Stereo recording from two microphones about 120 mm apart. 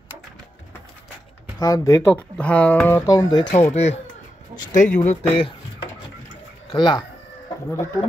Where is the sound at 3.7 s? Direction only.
65° left (ahead or behind).